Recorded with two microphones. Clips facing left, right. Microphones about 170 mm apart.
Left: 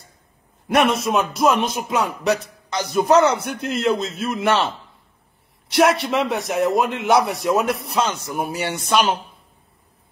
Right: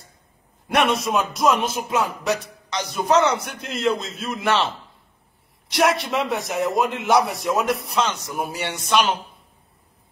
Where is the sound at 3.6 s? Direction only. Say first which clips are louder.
Left 3 dB; centre (ahead or behind).